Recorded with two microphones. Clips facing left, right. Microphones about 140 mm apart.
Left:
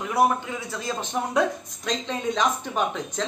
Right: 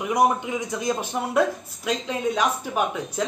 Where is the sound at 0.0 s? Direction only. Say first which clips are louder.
Right 1 dB; 15° right (ahead or behind).